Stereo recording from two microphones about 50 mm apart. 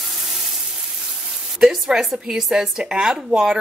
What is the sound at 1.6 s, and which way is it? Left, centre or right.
Speech, centre.